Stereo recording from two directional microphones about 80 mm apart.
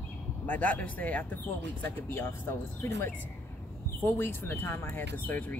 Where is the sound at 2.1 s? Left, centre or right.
Left.